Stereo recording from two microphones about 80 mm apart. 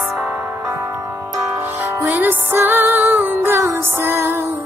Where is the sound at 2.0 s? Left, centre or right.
Right.